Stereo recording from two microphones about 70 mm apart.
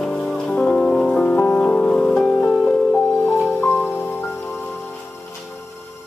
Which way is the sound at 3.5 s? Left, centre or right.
Left.